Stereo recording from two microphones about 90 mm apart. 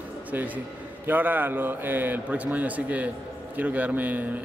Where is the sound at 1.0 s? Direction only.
20° right (ahead or behind).